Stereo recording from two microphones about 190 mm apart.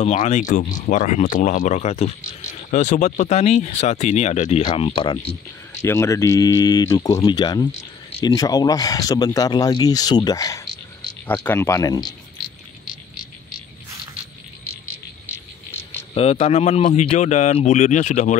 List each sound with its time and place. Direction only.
0.0 s speech: 35° left (ahead or behind)
5.8 s speech: 15° left (ahead or behind)
15.7 s cricket: 10° left (ahead or behind)
16.2 s speech: 30° left (ahead or behind)